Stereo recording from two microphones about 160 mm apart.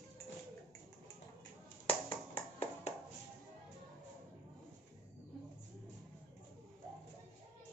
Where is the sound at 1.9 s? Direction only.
35° left (ahead or behind).